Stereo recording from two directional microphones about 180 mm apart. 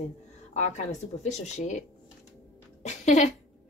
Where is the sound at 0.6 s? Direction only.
40° left (ahead or behind).